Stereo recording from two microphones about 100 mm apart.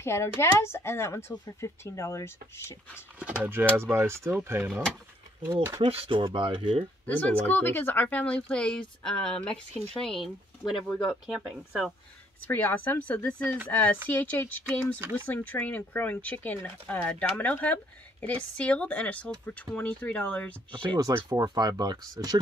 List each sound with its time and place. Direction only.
0.0 s a woman's voice: 25° left (ahead or behind)
2.9 s speech: 15° right (ahead or behind)
5.9 s speech: 65° right (ahead or behind)
7.1 s speech: 15° left (ahead or behind)
12.4 s speech: 20° left (ahead or behind)
20.7 s speech: 50° right (ahead or behind)
21.1 s speech: 40° right (ahead or behind)